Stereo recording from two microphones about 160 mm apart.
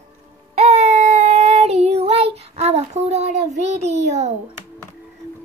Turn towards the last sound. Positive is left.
turn(degrees=-45)  # may be behind; listen again after turning